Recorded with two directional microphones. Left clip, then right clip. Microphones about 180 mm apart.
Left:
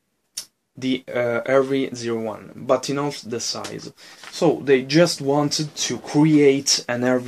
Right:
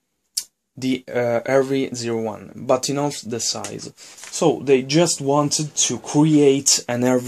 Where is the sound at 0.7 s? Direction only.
40° right (ahead or behind).